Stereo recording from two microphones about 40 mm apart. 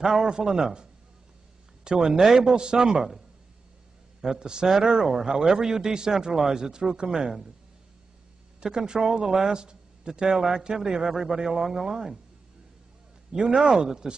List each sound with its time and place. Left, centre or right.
0.0 s a man's voice: centre
1.9 s a man's voice: centre
4.2 s a man's voice: centre
8.5 s a man's voice: centre
11.1 s a man's voice: centre
13.4 s a man's voice: right